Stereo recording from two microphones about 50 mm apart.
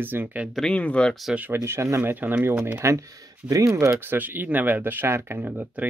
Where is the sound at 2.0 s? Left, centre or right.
Right.